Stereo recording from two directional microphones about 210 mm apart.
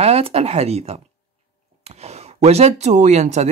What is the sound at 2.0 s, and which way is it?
Speech, 30° right (ahead or behind).